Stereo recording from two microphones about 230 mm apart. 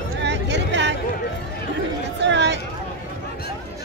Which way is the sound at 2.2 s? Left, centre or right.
Right.